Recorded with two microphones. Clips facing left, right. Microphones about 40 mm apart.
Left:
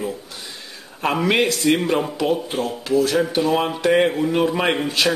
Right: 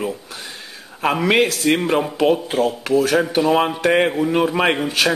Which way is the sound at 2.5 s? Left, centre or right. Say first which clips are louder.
Right 3 dB; right.